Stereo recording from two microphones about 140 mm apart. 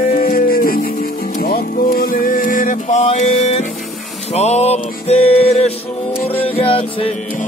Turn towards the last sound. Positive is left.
turn(degrees=40)  # may be behind; listen again after turning